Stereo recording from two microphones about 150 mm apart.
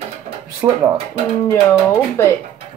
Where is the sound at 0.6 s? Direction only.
10° right (ahead or behind).